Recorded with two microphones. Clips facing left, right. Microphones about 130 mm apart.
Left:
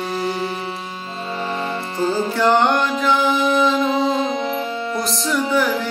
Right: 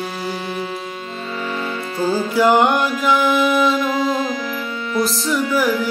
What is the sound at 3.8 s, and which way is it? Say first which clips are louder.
Music: left 1 dB; 25° left (ahead or behind).